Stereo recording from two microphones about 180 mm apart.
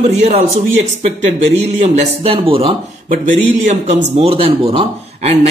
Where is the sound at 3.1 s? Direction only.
40° right (ahead or behind).